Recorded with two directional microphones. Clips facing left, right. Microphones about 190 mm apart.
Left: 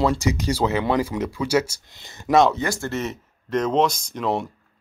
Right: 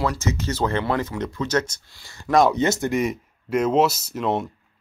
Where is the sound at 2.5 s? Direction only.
20° right (ahead or behind).